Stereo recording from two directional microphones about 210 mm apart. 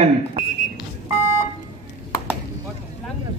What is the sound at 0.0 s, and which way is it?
Speech, 30° right (ahead or behind).